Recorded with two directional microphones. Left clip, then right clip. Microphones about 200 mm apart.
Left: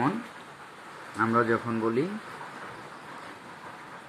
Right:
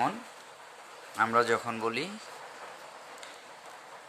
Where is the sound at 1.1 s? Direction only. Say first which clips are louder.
Left 1 dB; 75° right (ahead or behind).